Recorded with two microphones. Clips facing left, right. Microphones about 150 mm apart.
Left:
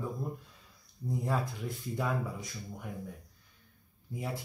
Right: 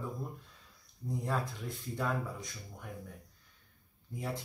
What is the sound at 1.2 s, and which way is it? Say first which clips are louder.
Speech: left 2 dB; 5° left (ahead or behind).